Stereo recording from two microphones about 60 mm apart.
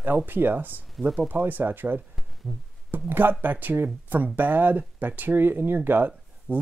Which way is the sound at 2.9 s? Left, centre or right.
Right.